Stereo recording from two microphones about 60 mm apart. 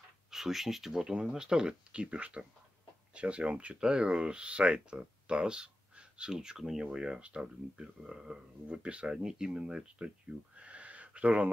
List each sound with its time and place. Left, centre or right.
0.3 s speech: centre; by 11.5 s right